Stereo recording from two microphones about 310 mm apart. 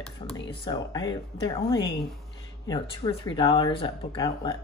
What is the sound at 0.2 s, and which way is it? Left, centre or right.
A woman's voice, centre.